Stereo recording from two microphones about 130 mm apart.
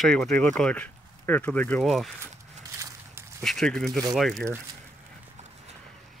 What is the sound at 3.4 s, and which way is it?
Speech, centre (ahead or behind).